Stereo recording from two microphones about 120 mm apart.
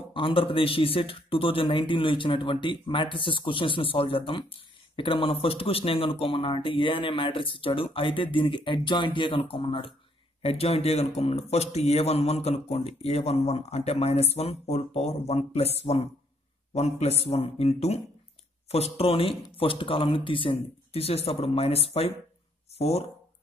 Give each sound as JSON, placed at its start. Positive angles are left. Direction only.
{"t": 0.1, "sound": "speech", "side_deg": 50}
{"t": 10.4, "sound": "a man's voice", "side_deg": 55}